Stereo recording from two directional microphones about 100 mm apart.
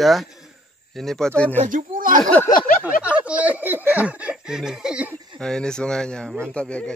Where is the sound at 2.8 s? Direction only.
15° right (ahead or behind).